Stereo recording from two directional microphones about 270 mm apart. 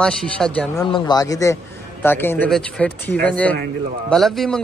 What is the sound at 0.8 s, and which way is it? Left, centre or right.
Speech, centre.